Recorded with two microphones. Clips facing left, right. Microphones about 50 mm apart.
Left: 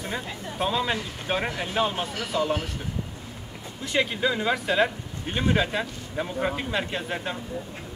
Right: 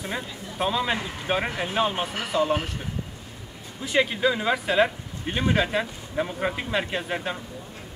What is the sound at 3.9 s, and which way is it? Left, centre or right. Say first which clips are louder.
Speech: right 2 dB; centre.